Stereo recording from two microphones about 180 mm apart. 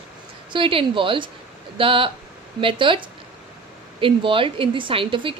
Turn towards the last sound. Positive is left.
turn(degrees=-30)  # may be behind; listen again after turning